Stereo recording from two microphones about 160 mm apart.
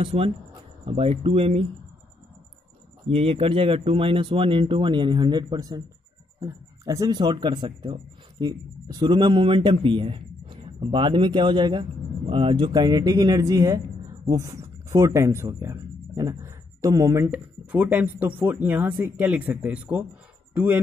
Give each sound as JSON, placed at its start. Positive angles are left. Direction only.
{"t": 0.0, "sound": "speech", "side_deg": -35}
{"t": 3.1, "sound": "speech", "side_deg": -35}